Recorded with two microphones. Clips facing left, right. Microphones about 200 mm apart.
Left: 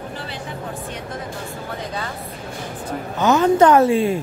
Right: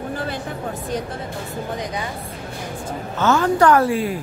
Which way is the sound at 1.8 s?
15° right (ahead or behind).